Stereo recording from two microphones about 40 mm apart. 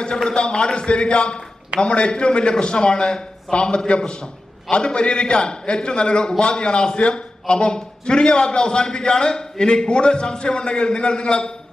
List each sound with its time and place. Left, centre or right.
0.0 s a man's voice: centre